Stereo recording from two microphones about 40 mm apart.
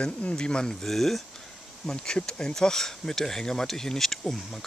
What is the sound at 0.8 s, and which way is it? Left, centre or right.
Speech, centre.